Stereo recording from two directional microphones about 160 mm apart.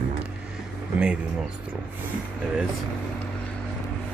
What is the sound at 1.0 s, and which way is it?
Speech, 5° right (ahead or behind).